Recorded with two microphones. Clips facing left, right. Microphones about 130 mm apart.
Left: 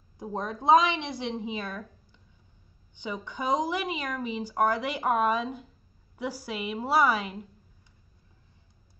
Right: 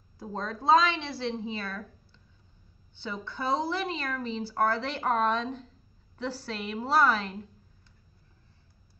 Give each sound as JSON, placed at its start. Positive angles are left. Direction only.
{"t": 0.2, "sound": "a woman's voice", "side_deg": 20}